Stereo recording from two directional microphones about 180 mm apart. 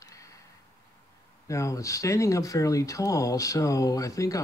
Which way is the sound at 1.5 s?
15° left (ahead or behind).